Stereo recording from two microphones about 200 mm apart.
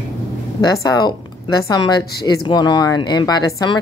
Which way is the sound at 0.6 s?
20° left (ahead or behind).